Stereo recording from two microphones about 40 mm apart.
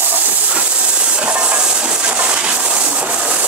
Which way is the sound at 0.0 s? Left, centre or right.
Right.